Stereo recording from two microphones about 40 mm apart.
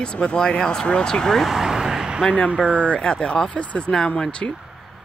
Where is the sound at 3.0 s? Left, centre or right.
Left.